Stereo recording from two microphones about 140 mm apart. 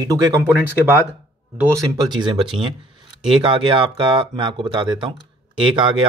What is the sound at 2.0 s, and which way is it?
Speech, 30° right (ahead or behind).